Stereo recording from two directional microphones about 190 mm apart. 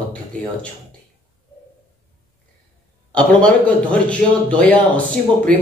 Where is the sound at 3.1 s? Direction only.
5° left (ahead or behind).